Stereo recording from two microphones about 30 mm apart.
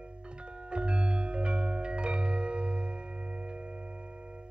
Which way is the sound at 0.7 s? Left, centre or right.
Right.